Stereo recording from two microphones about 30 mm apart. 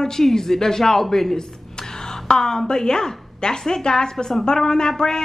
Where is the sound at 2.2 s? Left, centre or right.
Left.